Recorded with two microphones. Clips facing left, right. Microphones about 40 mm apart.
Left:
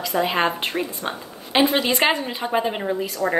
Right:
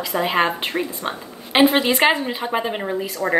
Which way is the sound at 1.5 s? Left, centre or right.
Right.